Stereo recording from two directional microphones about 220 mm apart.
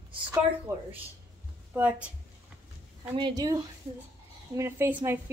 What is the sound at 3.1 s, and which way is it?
Speech, 20° right (ahead or behind).